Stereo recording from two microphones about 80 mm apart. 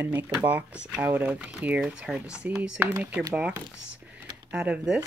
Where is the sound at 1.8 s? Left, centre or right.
Centre.